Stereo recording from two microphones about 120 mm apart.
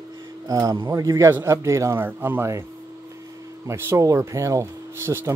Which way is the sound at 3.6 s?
25° right (ahead or behind).